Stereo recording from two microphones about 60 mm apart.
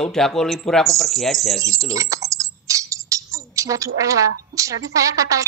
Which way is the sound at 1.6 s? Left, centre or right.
Right.